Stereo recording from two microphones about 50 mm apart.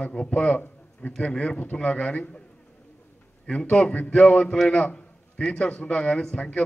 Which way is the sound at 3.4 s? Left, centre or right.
Centre.